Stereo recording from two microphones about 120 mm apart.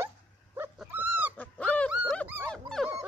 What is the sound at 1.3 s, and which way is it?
Dog, 15° left (ahead or behind).